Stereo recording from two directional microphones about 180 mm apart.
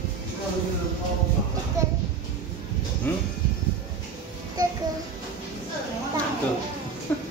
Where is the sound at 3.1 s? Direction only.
10° left (ahead or behind).